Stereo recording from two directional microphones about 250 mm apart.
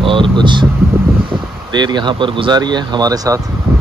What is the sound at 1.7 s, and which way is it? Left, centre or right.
Speech, centre.